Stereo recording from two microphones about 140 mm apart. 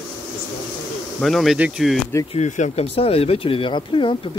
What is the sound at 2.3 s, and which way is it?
Speech, 55° left (ahead or behind).